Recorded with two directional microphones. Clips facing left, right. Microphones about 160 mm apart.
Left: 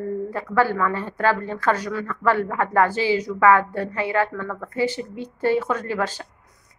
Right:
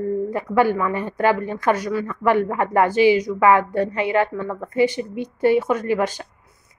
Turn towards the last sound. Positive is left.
turn(degrees=-15)  # may be behind; listen again after turning